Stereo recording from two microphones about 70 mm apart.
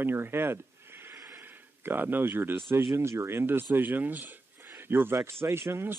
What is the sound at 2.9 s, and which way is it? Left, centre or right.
Speech, right.